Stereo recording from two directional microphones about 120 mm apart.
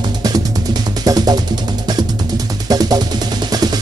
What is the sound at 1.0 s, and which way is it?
Music, 35° right (ahead or behind).